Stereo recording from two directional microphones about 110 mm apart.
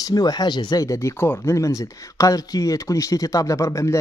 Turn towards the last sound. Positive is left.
turn(degrees=30)  # may be behind; listen again after turning